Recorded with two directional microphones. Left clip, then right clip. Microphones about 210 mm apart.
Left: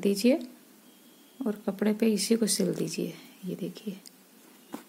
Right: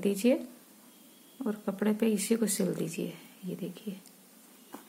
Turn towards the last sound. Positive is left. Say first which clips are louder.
# left 3 dB
turn(degrees=25)  # may be behind; listen again after turning